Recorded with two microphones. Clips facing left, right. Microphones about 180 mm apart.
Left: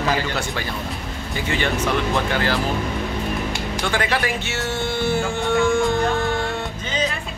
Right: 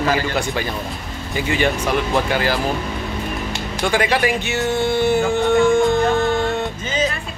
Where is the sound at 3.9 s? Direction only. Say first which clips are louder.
Right 6 dB; 15° right (ahead or behind).